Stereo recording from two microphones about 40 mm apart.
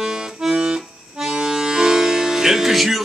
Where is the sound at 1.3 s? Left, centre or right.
Centre.